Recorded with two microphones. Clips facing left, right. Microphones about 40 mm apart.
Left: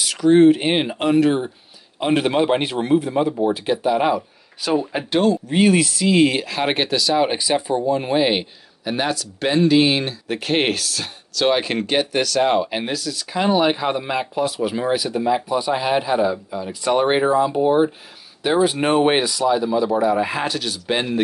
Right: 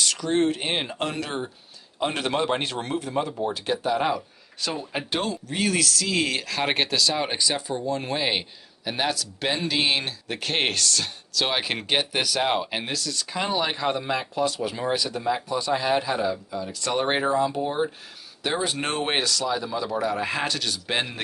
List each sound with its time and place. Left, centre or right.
0.0 s speech: centre
5.5 s speech: left; by 21.2 s centre